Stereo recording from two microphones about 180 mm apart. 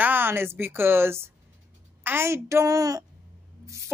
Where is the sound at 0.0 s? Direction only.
10° right (ahead or behind).